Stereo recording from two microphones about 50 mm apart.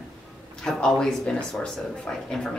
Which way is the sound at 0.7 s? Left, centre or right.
Centre.